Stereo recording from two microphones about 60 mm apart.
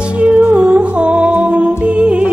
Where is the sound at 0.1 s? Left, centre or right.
Centre.